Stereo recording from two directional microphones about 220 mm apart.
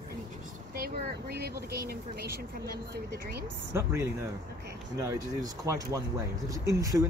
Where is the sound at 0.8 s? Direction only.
45° right (ahead or behind).